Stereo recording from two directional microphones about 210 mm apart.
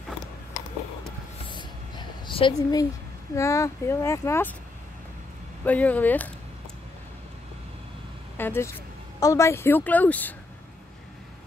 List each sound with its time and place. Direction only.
1.5 s a sound: 20° left (ahead or behind)
3.3 s speech: 15° left (ahead or behind)
5.7 s speech: 5° left (ahead or behind)
8.4 s speech: 10° left (ahead or behind)